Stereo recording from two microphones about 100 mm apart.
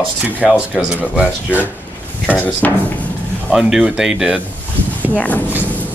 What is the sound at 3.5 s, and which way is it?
Speech, 5° right (ahead or behind).